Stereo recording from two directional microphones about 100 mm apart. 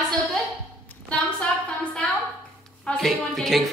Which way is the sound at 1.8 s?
10° left (ahead or behind).